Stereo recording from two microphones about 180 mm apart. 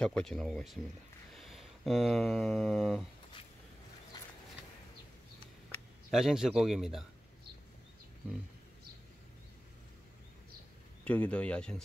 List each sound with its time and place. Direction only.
0.0 s a man's voice: 5° left (ahead or behind)
6.0 s a man's voice: centre (ahead or behind)
11.1 s speech: 5° left (ahead or behind)